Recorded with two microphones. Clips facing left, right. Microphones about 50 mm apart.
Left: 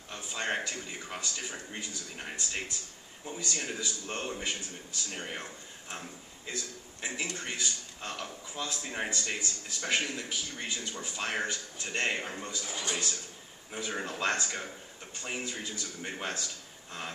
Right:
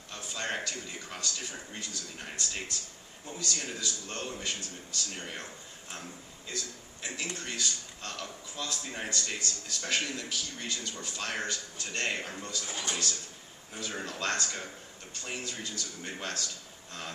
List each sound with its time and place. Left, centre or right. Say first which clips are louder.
0.1 s a man's voice: left 2 dB; centre